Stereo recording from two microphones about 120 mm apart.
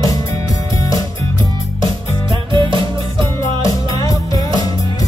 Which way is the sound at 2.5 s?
45° right (ahead or behind).